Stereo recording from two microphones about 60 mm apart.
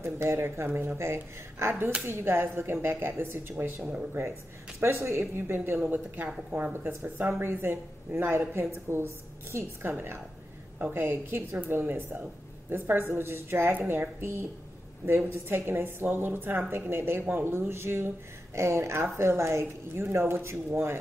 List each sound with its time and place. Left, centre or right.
0.0 s a woman's voice: right
3.8 s speech: right
4.7 s a woman's voice: right
15.0 s a woman's voice: right